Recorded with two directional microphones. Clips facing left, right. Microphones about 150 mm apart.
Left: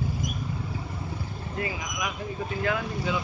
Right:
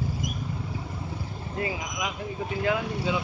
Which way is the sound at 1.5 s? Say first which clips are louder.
Right 1 dB; 25° right (ahead or behind).